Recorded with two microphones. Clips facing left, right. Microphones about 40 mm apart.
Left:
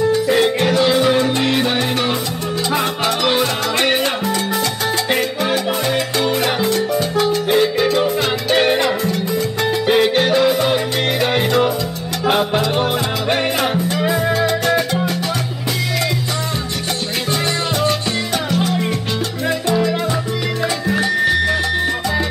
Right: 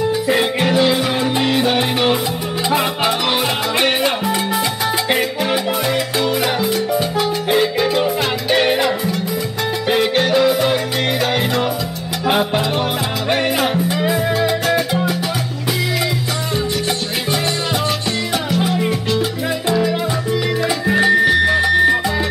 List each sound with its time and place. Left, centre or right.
0.1 s music: centre
1.8 s salsa music: centre
2.7 s music: centre
5.1 s salsa music: centre
6.3 s music: centre
18.6 s music: centre